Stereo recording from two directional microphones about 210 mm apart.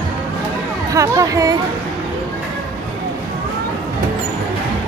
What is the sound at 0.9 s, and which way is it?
Speech, 15° right (ahead or behind).